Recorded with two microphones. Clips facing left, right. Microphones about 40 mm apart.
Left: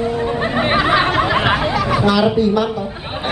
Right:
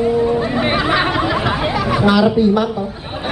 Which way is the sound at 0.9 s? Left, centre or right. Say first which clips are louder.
Left 1 dB; centre.